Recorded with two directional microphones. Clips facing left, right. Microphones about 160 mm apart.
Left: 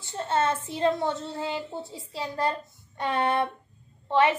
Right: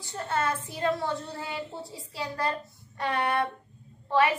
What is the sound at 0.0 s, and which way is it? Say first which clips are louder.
A woman's voice: left 3 dB; 25° left (ahead or behind).